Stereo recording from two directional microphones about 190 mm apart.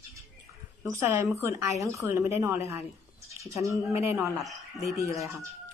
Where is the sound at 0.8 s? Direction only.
15° right (ahead or behind).